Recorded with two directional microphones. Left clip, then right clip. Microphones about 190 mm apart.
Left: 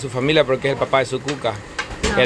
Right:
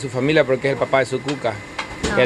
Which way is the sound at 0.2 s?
10° right (ahead or behind).